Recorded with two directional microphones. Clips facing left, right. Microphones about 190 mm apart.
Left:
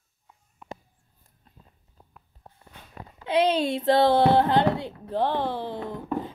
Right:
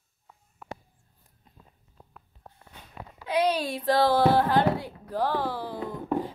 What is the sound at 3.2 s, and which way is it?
Speech, 25° left (ahead or behind).